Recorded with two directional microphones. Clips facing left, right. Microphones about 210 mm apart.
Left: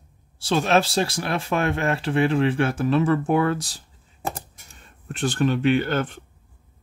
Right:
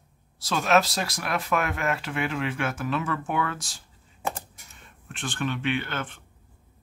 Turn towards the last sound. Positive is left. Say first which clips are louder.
# left 8 dB
turn(degrees=40)  # may be behind; listen again after turning